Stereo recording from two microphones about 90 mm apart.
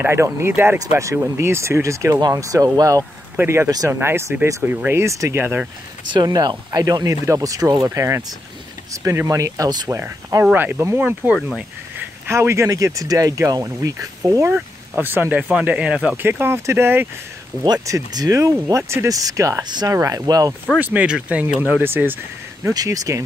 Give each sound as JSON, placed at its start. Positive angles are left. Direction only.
{"t": 0.0, "sound": "speech", "side_deg": -30}
{"t": 3.3, "sound": "speech", "side_deg": -30}
{"t": 6.1, "sound": "speech", "side_deg": -50}
{"t": 9.8, "sound": "speech", "side_deg": -30}
{"t": 12.3, "sound": "speech", "side_deg": -30}
{"t": 15.0, "sound": "speech", "side_deg": -20}
{"t": 16.2, "sound": "speech", "side_deg": -25}
{"t": 17.8, "sound": "speech", "side_deg": -40}
{"t": 20.8, "sound": "speech", "side_deg": -15}
{"t": 22.7, "sound": "speech", "side_deg": -40}